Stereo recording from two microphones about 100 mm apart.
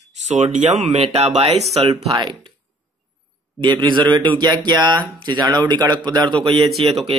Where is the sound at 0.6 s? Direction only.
90° right.